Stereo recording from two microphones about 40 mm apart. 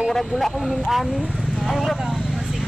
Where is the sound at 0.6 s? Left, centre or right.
Centre.